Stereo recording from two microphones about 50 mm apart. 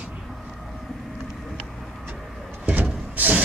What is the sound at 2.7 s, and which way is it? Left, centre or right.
Vehicle, right.